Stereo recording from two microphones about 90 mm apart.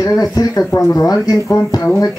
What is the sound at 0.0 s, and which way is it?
Speech, 45° left (ahead or behind).